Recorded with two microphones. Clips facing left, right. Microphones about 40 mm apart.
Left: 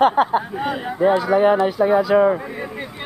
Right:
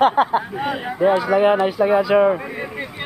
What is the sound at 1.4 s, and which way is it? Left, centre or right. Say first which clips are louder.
Speech: even; right.